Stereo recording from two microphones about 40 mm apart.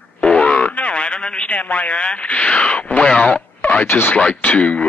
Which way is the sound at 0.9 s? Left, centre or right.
Left.